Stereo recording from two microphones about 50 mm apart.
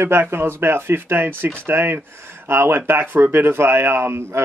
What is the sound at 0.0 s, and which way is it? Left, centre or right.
Speech, right.